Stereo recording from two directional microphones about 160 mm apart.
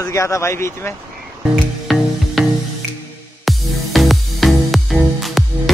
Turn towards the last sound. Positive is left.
turn(degrees=0)  # may be behind; listen again after turning